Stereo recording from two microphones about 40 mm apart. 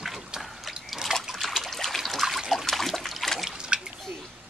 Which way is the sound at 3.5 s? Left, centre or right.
Right.